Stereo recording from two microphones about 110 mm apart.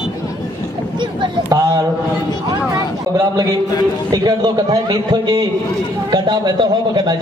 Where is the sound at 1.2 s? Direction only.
35° right (ahead or behind).